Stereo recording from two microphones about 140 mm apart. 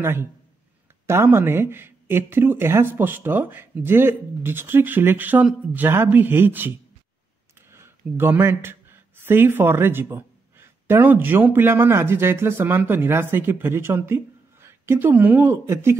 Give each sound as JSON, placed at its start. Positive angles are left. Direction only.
{"t": 0.0, "sound": "speech", "side_deg": -15}